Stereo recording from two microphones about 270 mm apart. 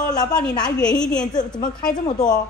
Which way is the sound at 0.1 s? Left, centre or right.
Centre.